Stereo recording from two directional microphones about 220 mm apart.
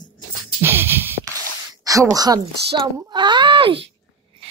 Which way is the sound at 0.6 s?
10° right (ahead or behind).